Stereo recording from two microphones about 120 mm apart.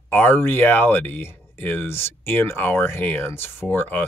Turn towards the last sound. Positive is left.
turn(degrees=15)  # may be behind; listen again after turning